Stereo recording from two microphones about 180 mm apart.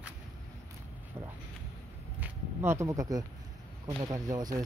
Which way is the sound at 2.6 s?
15° right (ahead or behind).